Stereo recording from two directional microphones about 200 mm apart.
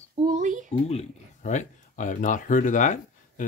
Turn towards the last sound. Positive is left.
turn(degrees=40)  # may be behind; listen again after turning